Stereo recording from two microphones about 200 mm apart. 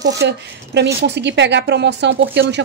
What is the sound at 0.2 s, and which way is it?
Speech, 60° right (ahead or behind).